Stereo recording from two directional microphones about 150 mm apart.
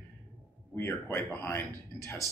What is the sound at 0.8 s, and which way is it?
Speech, 15° left (ahead or behind).